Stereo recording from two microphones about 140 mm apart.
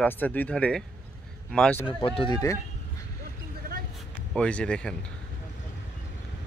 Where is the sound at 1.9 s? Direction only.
40° left (ahead or behind).